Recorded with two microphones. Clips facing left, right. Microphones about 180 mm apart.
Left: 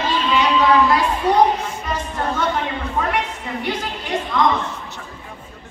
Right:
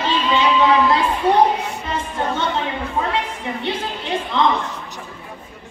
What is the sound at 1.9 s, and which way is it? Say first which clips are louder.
Music: even; 25° right (ahead or behind).